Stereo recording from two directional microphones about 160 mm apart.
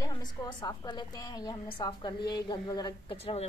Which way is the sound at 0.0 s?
25° left (ahead or behind).